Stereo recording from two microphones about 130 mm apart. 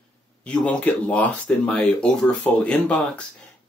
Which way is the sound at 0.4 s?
10° left (ahead or behind).